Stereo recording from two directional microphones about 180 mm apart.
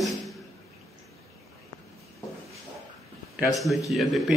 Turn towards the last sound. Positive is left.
turn(degrees=0)  # may be behind; listen again after turning